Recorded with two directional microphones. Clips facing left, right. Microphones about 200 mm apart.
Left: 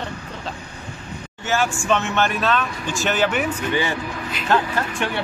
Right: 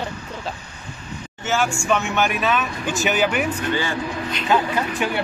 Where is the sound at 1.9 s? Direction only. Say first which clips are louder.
Left 1 dB; centre (ahead or behind).